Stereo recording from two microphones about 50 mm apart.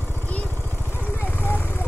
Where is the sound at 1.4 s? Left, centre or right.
Left.